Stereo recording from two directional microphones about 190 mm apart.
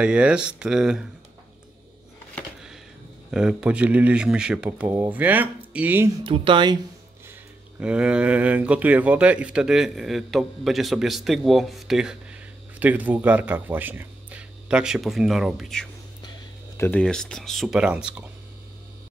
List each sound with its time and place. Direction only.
0.0 s speech: 5° right (ahead or behind)
2.3 s a sound: centre (ahead or behind)
3.3 s speech: 5° right (ahead or behind)
6.2 s speech: 25° right (ahead or behind)
7.8 s speech: 5° right (ahead or behind)